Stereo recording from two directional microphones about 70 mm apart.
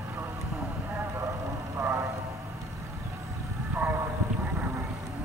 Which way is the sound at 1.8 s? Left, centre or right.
Right.